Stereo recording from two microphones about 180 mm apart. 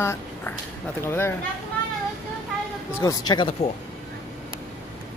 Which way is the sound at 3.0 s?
20° left (ahead or behind).